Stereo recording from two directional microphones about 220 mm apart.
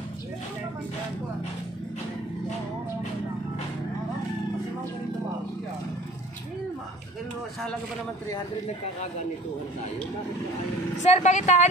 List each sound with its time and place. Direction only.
11.1 s speech: 30° left (ahead or behind)